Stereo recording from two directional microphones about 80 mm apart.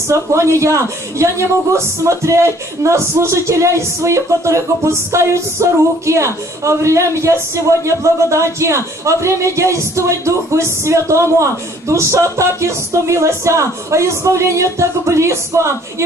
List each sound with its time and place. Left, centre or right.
0.1 s a woman's voice: right